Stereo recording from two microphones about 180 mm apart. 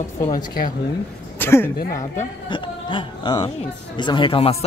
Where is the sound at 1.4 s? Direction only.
15° left (ahead or behind).